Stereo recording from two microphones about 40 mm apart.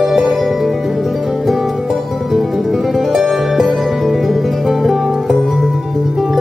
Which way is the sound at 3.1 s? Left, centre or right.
Centre.